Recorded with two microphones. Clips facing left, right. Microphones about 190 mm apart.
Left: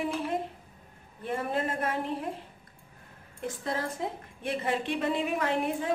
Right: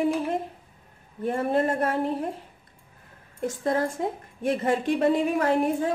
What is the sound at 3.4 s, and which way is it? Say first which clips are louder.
A woman's voice: right 7 dB; 45° right (ahead or behind).